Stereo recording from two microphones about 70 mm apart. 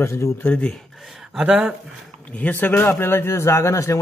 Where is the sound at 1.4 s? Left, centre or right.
Centre.